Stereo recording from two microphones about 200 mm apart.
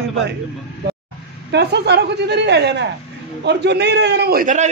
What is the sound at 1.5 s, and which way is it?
A woman's voice, 55° right (ahead or behind).